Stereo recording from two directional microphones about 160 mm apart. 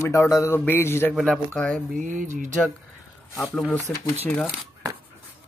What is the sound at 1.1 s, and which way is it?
Speech, 5° left (ahead or behind).